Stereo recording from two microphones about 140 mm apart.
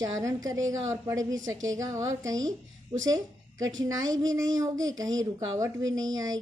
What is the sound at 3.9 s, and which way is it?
A woman's voice, 25° right (ahead or behind).